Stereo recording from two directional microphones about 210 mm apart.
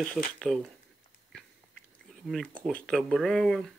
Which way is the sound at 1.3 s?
5° left (ahead or behind).